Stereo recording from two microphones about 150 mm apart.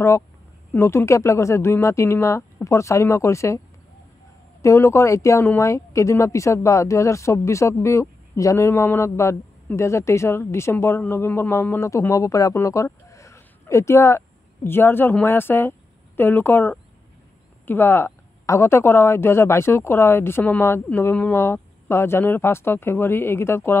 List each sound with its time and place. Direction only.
0.7 s speech: 15° left (ahead or behind)